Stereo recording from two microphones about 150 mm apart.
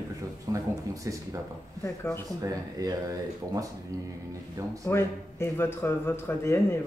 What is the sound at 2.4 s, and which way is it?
Speech, 25° right (ahead or behind).